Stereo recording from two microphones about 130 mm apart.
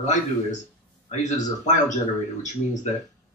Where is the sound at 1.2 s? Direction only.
65° left (ahead or behind).